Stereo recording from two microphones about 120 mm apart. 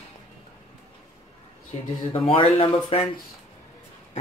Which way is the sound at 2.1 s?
55° left (ahead or behind).